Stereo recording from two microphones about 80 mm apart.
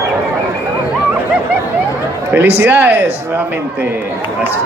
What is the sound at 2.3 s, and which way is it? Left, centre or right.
Speech, right.